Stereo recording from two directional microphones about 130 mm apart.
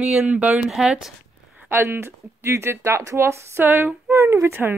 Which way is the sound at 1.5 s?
15° right (ahead or behind).